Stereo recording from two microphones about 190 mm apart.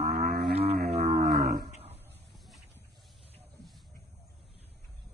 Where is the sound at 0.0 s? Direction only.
55° right (ahead or behind).